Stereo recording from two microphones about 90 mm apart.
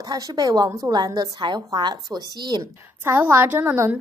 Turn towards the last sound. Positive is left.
turn(degrees=-20)  # may be behind; listen again after turning